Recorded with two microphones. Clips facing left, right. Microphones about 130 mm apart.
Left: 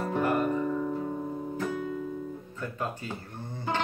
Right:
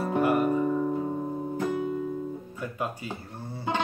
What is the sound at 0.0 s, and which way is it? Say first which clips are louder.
Music: right 3 dB; 10° right (ahead or behind).